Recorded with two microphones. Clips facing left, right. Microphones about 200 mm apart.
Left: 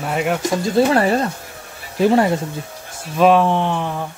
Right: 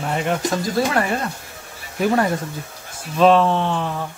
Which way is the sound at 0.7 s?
30° left (ahead or behind).